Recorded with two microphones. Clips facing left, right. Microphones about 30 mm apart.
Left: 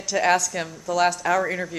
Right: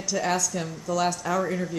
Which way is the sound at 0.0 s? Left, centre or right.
Left.